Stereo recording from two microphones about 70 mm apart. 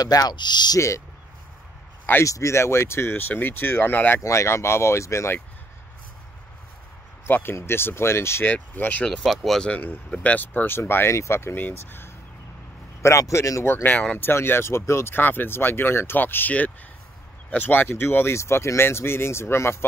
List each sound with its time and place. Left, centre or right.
0.0 s speech: left
0.7 s speech: left
2.2 s speech: left
4.2 s speech: left
7.2 s speech: left
8.5 s speech: left
9.2 s speech: centre
9.6 s speech: centre
13.0 s speech: left
14.1 s speech: left